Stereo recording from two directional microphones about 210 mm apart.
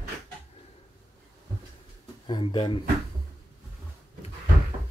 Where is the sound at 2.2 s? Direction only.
20° left (ahead or behind).